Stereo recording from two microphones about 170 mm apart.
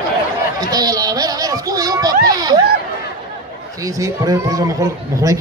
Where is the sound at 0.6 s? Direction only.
25° right (ahead or behind).